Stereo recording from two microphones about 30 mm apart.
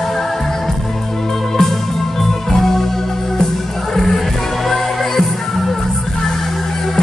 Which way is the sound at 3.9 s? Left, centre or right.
Centre.